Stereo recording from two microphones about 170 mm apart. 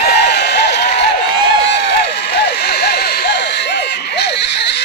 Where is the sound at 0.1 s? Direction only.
85° left.